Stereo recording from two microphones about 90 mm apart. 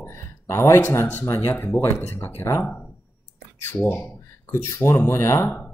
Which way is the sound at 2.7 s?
15° left (ahead or behind).